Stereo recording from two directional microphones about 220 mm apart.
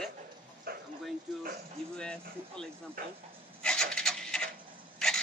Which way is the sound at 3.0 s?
40° right (ahead or behind).